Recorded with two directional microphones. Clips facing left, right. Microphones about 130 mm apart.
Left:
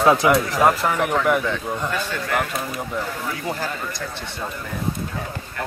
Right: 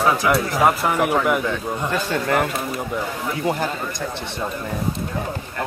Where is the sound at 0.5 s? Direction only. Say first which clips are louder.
Even; 5° right (ahead or behind).